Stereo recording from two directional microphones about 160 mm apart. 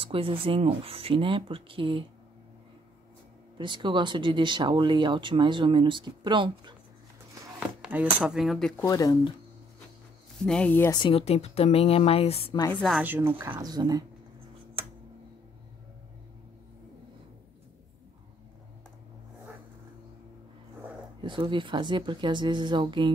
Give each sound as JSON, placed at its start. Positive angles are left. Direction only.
{"t": 0.0, "sound": "speech", "side_deg": -35}
{"t": 3.5, "sound": "speech", "side_deg": -30}
{"t": 7.8, "sound": "speech", "side_deg": -5}
{"t": 8.8, "sound": "speech", "side_deg": 20}
{"t": 10.4, "sound": "speech", "side_deg": 5}
{"t": 10.9, "sound": "speech", "side_deg": 30}
{"t": 13.0, "sound": "speech", "side_deg": -10}
{"t": 21.2, "sound": "speech", "side_deg": -30}